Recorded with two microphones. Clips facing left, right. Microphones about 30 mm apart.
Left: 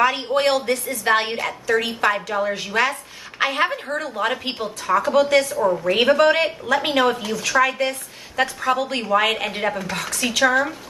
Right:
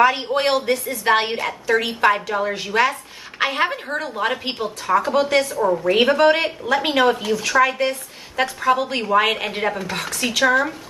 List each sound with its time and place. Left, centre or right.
0.0 s a woman's voice: centre